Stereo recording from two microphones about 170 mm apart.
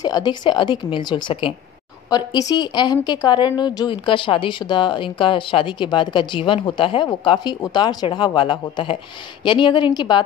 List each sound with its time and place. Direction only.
0.0 s a woman's voice: 25° left (ahead or behind)